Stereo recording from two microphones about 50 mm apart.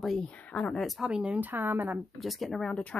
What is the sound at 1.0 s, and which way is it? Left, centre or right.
Speech, centre.